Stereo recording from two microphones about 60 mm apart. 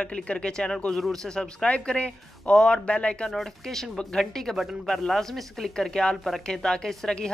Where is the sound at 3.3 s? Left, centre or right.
Centre.